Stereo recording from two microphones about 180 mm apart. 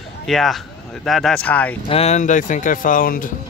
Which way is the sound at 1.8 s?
35° left (ahead or behind).